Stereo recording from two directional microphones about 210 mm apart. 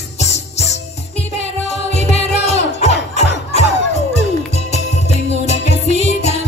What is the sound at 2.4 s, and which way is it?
Music, 30° left (ahead or behind).